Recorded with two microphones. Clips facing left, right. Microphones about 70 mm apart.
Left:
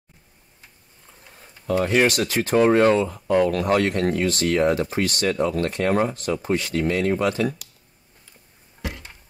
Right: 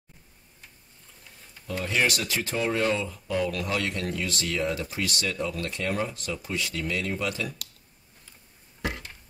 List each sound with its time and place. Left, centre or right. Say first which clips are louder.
1.8 s speech: left 7 dB; left